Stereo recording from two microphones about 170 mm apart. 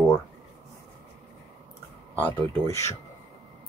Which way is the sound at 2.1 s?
10° left (ahead or behind).